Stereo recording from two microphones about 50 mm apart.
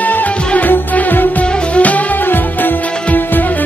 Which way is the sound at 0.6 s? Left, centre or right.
Left.